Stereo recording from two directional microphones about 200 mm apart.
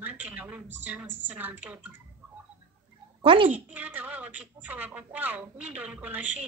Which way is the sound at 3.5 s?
10° right (ahead or behind).